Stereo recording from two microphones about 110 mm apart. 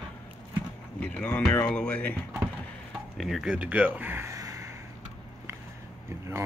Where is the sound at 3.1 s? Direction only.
Centre (ahead or behind); by 4.3 s 20° right (ahead or behind).